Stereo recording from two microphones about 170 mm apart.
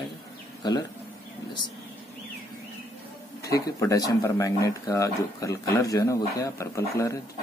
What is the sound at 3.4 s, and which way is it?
Speech, 20° left (ahead or behind).